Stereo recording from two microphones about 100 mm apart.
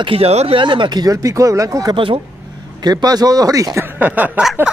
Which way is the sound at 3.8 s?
15° right (ahead or behind).